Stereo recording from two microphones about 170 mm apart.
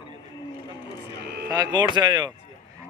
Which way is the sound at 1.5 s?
20° right (ahead or behind).